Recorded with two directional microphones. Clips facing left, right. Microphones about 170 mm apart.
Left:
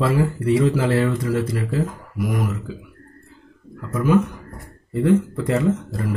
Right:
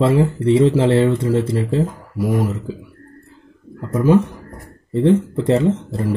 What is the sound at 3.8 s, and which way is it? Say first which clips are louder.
Speech: right 4 dB; 30° right (ahead or behind).